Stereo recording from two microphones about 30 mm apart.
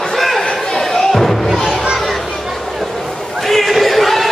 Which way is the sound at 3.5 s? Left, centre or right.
Centre.